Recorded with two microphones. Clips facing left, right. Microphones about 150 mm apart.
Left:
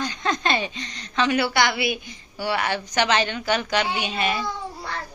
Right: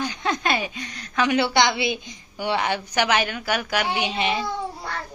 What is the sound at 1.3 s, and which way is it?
A woman's voice, 20° right (ahead or behind).